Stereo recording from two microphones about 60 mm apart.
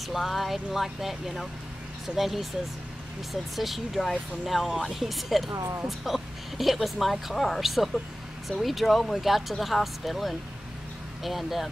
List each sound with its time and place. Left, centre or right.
0.1 s speech: centre
3.5 s speech: centre
5.5 s speech: right
5.9 s speech: centre